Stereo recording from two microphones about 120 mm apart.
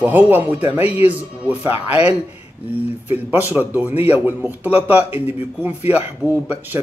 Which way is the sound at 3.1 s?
15° right (ahead or behind).